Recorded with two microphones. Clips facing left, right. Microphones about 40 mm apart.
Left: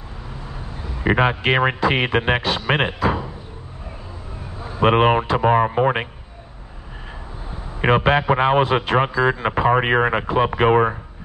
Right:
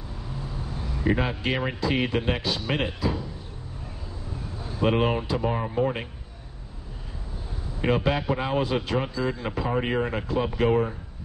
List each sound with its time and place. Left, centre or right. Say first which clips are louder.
1.0 s speech: left 8 dB; left
3.0 s a sound: left 7 dB; left
4.7 s speech: left 8 dB; left
7.8 s speech: left 8 dB; left